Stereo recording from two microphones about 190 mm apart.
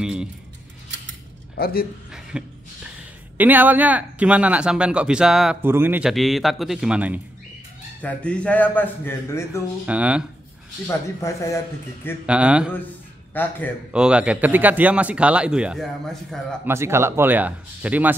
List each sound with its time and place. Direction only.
0.0 s keys jangling: 5° right (ahead or behind)
1.5 s speech: 55° left (ahead or behind)
2.3 s speech: 5° right (ahead or behind)
8.0 s speech: 5° left (ahead or behind)
9.8 s speech: 5° right (ahead or behind)
10.9 s speech: 15° left (ahead or behind)
12.3 s speech: 5° right (ahead or behind)
13.3 s speech: 10° left (ahead or behind)
13.9 s speech: 5° right (ahead or behind)
16.6 s speech: 15° right (ahead or behind)